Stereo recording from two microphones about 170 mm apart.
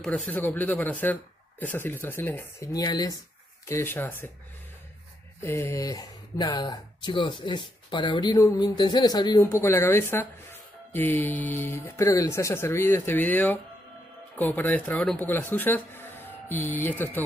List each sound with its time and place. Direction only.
0.3 s speech: 10° left (ahead or behind)
3.6 s speech: 15° left (ahead or behind)
5.4 s speech: 15° left (ahead or behind)